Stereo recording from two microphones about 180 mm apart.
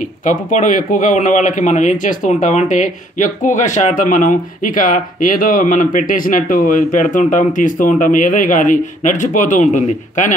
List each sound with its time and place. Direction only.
0.2 s speech: 45° left (ahead or behind)